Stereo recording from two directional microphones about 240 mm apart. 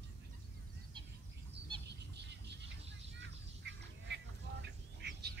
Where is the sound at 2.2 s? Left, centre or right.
Right.